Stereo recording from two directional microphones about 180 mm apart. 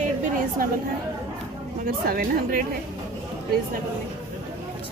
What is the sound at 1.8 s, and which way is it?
Speech, 55° right (ahead or behind).